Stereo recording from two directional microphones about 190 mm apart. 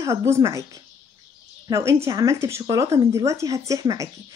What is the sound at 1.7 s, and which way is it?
Speech, 15° right (ahead or behind).